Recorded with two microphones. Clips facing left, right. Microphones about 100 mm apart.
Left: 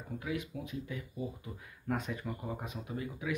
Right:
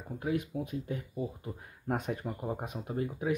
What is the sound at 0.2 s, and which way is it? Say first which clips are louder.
Speech: right 7 dB; 45° right (ahead or behind).